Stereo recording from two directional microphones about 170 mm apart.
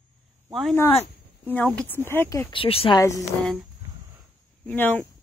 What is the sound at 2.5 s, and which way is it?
Speech, 35° left (ahead or behind).